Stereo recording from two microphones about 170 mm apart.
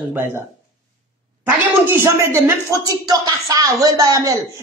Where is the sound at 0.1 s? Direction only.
15° right (ahead or behind).